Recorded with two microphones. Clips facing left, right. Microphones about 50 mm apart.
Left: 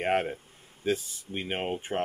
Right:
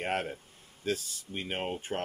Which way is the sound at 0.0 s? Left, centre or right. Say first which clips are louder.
Left 5 dB; left.